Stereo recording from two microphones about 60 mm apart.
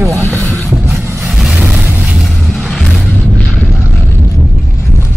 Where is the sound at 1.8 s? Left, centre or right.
Right.